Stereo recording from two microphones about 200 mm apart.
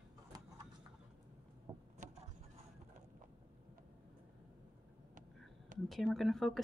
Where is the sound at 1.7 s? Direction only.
15° right (ahead or behind).